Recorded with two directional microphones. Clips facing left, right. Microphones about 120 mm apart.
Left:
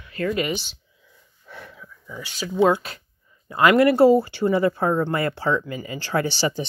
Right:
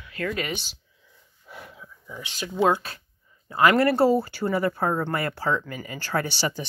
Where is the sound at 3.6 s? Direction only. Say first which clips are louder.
Left 3 dB; 25° right (ahead or behind).